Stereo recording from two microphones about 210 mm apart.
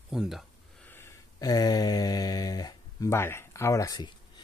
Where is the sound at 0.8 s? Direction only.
10° left (ahead or behind).